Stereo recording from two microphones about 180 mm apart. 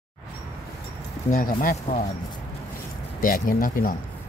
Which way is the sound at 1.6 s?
50° left (ahead or behind).